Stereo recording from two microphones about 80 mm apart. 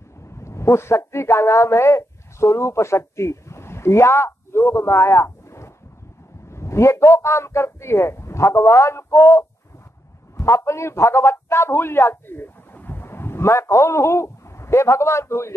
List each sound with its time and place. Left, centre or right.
0.2 s a man's voice: left